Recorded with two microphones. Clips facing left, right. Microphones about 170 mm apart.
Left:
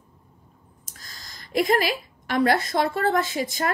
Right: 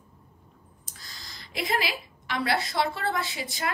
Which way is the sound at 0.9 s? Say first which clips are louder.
Left 1 dB; 45° left (ahead or behind).